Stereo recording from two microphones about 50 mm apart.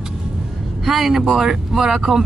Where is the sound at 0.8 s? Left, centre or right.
Centre.